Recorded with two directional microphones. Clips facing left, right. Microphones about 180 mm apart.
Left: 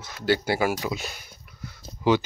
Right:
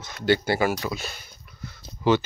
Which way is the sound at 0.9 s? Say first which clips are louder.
Left 1 dB; 15° left (ahead or behind).